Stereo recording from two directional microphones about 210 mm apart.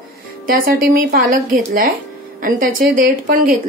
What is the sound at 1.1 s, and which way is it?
A woman's voice, 40° right (ahead or behind).